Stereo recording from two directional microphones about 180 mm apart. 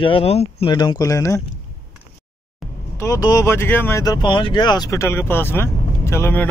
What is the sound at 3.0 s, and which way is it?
Speech, 20° left (ahead or behind).